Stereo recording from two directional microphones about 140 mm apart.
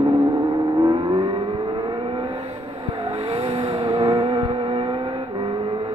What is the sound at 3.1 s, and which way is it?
Vehicle, 30° right (ahead or behind).